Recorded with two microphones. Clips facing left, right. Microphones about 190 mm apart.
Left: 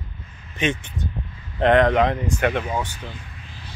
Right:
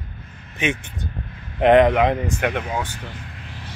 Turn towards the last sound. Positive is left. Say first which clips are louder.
# right 4 dB
turn(degrees=-75)  # may be behind; listen again after turning